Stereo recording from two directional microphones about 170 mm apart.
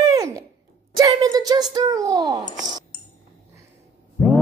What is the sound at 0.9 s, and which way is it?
Speech, 20° right (ahead or behind).